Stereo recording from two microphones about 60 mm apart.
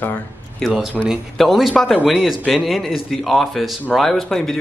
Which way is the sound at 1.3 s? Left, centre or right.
Centre.